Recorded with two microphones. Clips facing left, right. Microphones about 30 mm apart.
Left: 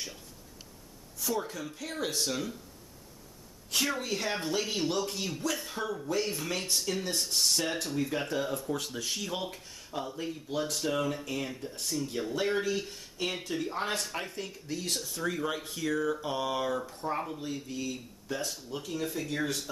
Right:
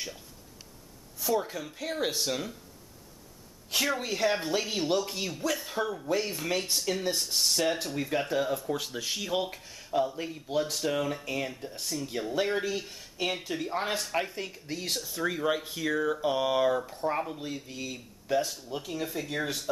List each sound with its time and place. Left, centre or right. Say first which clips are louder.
1.2 s speech: right 4 dB; centre
3.7 s speech: right 2 dB; centre
15.0 s speech: right 2 dB; centre
15.2 s speech: right 4 dB; centre